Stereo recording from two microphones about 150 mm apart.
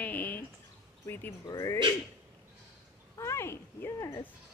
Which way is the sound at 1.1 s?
15° left (ahead or behind).